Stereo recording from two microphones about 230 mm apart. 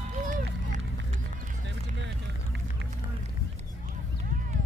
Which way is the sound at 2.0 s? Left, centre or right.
Right.